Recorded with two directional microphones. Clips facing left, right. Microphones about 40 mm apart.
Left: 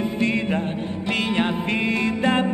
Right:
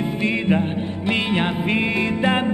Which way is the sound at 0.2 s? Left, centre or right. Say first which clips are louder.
Right 3 dB; centre.